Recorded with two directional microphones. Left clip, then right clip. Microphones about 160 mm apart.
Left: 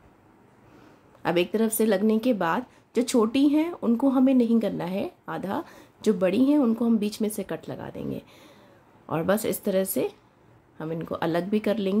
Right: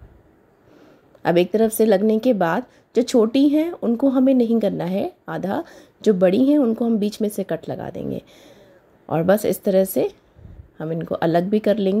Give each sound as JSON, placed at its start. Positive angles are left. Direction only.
{"t": 1.2, "sound": "a woman's voice", "side_deg": -30}